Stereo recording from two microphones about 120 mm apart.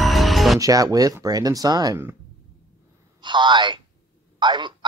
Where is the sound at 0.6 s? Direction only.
30° right (ahead or behind).